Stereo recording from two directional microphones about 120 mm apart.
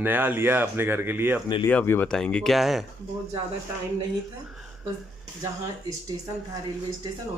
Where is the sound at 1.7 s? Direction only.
15° left (ahead or behind); by 2.9 s centre (ahead or behind).